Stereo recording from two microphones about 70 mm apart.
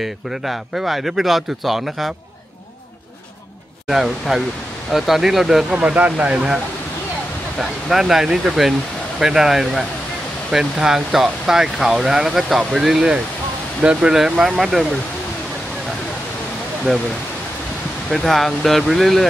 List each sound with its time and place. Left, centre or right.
0.0 s speech: centre
3.8 s speech: centre
5.8 s speech: centre
7.5 s speech: centre
16.9 s speech: centre
18.1 s speech: centre